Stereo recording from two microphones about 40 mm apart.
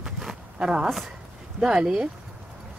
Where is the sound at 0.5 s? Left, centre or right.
Centre.